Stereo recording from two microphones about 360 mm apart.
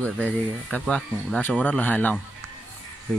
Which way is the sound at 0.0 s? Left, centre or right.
Centre.